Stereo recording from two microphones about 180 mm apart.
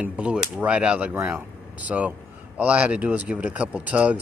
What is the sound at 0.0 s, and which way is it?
Speech, 5° right (ahead or behind).